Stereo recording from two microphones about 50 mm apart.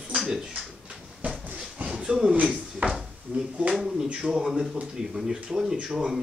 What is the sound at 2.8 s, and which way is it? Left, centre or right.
Speech, right.